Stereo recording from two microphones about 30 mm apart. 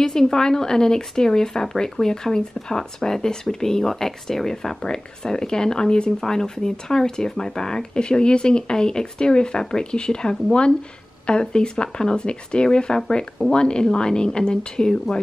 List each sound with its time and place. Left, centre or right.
0.0 s speech: centre
4.8 s speech: left
8.0 s speech: left